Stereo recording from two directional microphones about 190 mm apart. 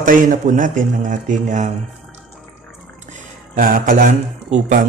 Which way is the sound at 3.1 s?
45° right (ahead or behind).